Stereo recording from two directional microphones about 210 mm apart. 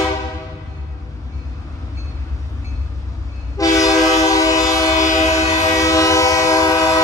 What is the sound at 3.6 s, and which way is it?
Train, 15° left (ahead or behind).